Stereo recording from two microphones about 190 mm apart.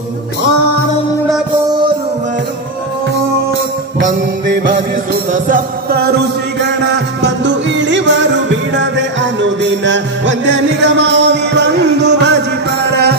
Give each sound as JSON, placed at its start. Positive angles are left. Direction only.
{"t": 5.3, "sound": "music", "side_deg": -50}